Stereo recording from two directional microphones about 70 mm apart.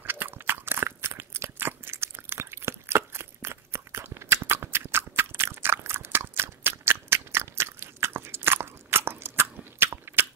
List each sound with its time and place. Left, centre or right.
0.0 s biting: right